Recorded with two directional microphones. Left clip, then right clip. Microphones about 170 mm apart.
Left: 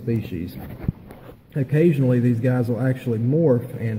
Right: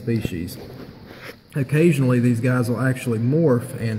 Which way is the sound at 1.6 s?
15° right (ahead or behind).